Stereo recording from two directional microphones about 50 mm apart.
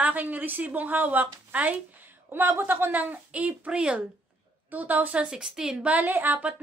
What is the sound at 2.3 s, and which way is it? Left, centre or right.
A woman's voice, right.